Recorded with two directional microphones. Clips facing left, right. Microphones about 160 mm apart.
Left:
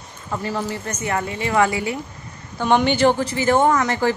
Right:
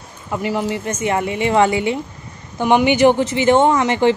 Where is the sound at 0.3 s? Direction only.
15° right (ahead or behind).